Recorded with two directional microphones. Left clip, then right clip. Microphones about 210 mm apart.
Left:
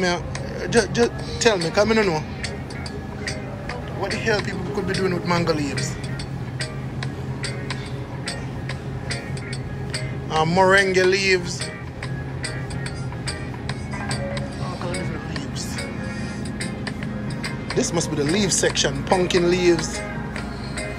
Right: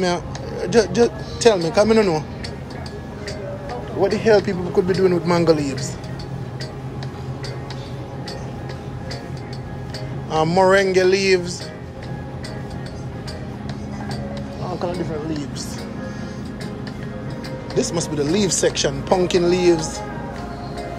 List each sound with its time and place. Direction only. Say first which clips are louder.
0.0 s speech: right 1 dB; 25° right (ahead or behind)
4.0 s a man's voice: right 7 dB; 40° right (ahead or behind)
10.3 s speech: right 1 dB; 25° right (ahead or behind)
17.7 s speech: right 2 dB; 20° right (ahead or behind)